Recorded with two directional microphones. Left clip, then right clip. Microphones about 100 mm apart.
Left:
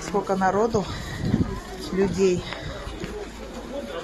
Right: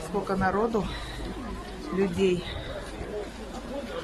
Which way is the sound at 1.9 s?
Centre (ahead or behind).